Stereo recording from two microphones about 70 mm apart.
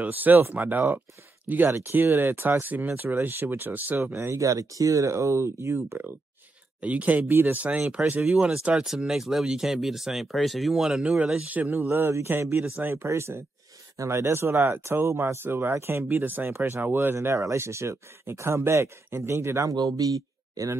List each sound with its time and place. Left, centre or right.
0.0 s speech: right
4.1 s speech: right
6.8 s speech: right
7.2 s speech: right
7.8 s speech: centre
11.4 s speech: right
11.8 s speech: right
19.7 s speech: right